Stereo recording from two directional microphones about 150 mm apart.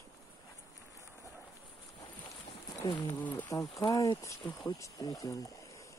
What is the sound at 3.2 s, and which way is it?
Speech, 15° left (ahead or behind).